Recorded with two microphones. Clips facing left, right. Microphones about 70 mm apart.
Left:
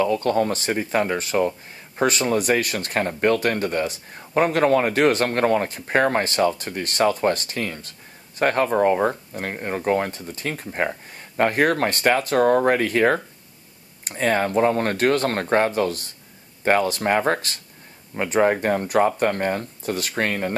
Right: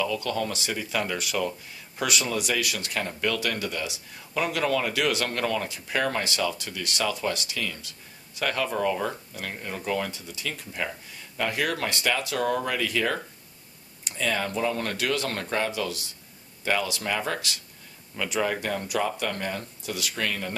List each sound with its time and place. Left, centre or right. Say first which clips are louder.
0.0 s speech: left 8 dB; left